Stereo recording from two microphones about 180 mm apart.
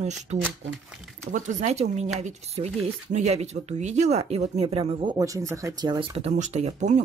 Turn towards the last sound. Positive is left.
turn(degrees=-40)  # may be behind; listen again after turning